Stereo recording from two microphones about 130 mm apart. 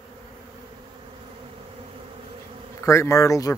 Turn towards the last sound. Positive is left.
turn(degrees=25)  # may be behind; listen again after turning